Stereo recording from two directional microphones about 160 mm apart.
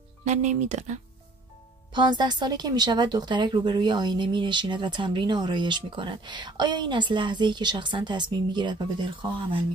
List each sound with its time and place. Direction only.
0.2 s speech: 45° right (ahead or behind)
2.0 s a woman's voice: 25° right (ahead or behind)